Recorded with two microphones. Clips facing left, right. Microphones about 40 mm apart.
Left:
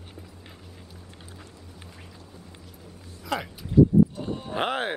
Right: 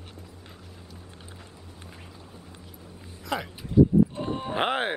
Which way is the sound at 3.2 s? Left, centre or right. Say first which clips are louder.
Left 1 dB; centre.